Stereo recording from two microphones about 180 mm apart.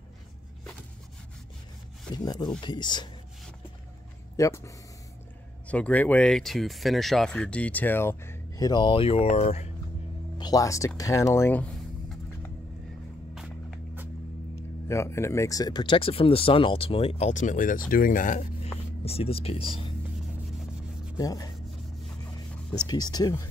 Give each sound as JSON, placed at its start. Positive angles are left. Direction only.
{"t": 2.1, "sound": "speech", "side_deg": 20}
{"t": 4.4, "sound": "speech", "side_deg": 15}
{"t": 10.3, "sound": "speech", "side_deg": 20}
{"t": 13.3, "sound": "walk", "side_deg": 0}
{"t": 14.9, "sound": "speech", "side_deg": 15}
{"t": 21.2, "sound": "speech", "side_deg": 20}
{"t": 22.8, "sound": "speech", "side_deg": 20}